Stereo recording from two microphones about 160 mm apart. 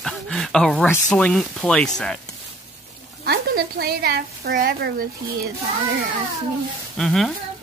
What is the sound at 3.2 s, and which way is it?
Speech, 80° right.